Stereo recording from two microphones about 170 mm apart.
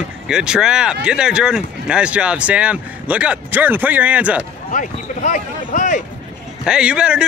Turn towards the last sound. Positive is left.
turn(degrees=-5)  # may be behind; listen again after turning